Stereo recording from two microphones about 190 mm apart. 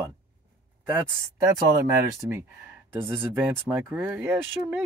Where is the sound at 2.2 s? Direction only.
45° right (ahead or behind).